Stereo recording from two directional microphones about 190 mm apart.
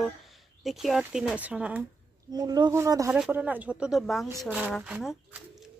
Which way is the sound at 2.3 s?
20° right (ahead or behind).